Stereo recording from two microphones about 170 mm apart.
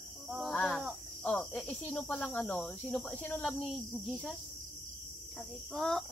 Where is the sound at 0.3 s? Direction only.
Centre (ahead or behind).